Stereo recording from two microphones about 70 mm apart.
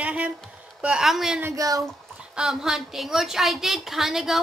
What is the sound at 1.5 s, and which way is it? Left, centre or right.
Speech, right.